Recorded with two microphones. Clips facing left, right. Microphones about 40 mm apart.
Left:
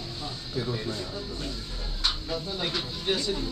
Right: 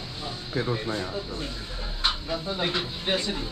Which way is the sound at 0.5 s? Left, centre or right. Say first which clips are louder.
Right 4 dB; right.